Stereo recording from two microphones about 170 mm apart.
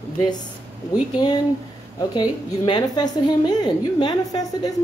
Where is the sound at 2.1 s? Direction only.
25° left (ahead or behind).